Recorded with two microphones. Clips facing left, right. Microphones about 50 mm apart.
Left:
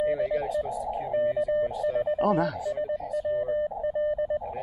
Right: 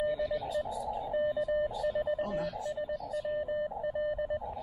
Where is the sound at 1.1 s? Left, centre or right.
Left.